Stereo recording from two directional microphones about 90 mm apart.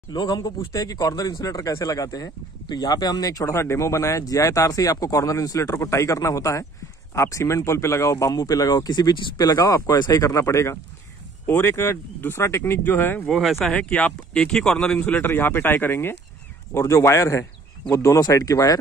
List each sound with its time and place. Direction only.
0.1 s speech: 50° left (ahead or behind)
9.6 s speech: 35° left (ahead or behind)
13.3 s speech: centre (ahead or behind)
13.7 s speech: 15° left (ahead or behind)
15.0 s speech: 20° left (ahead or behind); by 18.8 s 40° left (ahead or behind)